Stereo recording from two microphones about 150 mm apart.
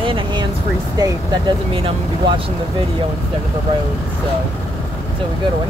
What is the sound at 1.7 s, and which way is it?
Speech, 40° right (ahead or behind).